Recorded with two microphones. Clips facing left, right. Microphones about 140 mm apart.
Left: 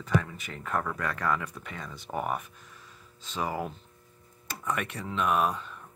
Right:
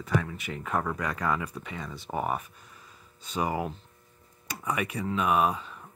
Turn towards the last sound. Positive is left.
turn(degrees=-5)  # may be behind; listen again after turning